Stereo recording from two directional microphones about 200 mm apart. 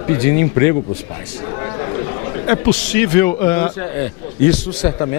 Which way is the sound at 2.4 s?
10° left (ahead or behind).